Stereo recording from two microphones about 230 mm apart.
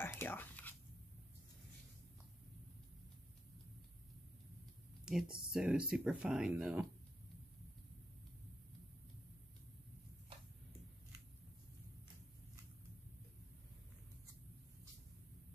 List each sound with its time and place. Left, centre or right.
0.0 s whispering: centre
5.0 s speech: centre